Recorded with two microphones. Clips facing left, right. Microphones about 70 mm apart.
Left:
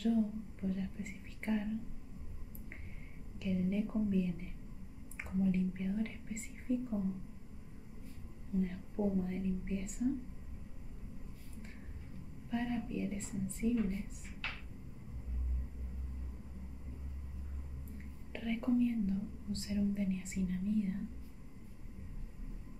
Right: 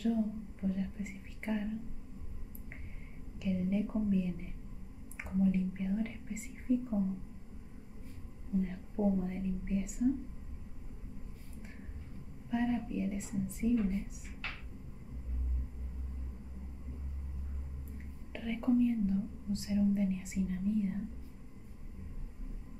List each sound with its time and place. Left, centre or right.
0.0 s whispering: centre
3.3 s a sound: centre
5.4 s whispering: centre
8.5 s whispering: centre
12.4 s speech: centre
18.3 s speech: centre